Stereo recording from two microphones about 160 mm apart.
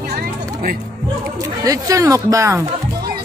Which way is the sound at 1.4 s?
20° right (ahead or behind).